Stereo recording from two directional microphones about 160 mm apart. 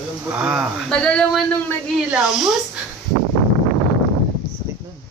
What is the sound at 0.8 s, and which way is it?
A man's voice, 5° left (ahead or behind).